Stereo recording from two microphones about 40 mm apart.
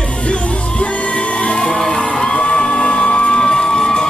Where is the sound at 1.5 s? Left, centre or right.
Centre.